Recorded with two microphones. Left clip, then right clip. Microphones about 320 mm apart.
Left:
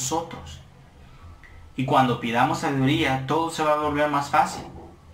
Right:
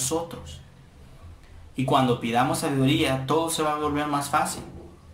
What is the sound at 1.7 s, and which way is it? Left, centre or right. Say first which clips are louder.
Speech: left 2 dB; right.